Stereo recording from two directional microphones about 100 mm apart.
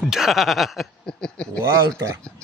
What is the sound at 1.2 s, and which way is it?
Speech, 10° left (ahead or behind).